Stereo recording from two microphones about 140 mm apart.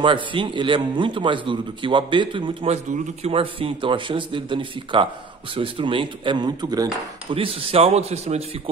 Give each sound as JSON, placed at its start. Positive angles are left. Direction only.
{"t": 0.0, "sound": "a man's voice", "side_deg": -35}
{"t": 7.3, "sound": "speech", "side_deg": -45}